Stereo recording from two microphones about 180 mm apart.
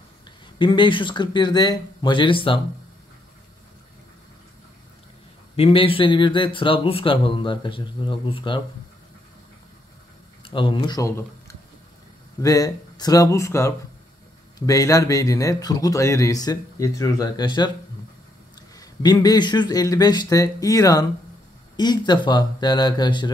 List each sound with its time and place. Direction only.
0.6 s speech: 25° left (ahead or behind)
5.6 s speech: 30° left (ahead or behind)
10.4 s speech: 30° left (ahead or behind)
18.8 s speech: 20° left (ahead or behind)